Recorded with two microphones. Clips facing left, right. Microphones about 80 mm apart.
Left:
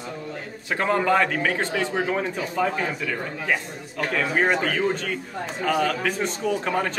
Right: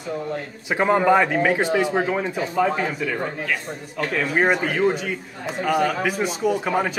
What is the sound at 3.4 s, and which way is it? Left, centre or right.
Speech, centre.